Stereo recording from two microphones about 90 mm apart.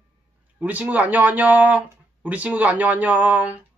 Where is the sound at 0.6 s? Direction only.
15° right (ahead or behind).